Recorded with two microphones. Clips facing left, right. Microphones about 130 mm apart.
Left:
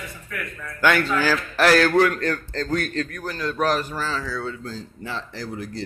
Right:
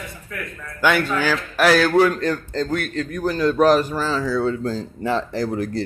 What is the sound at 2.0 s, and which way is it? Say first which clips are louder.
A man's voice: right 3 dB; 20° right (ahead or behind).